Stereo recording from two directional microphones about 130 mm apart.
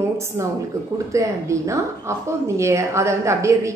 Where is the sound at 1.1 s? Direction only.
25° right (ahead or behind).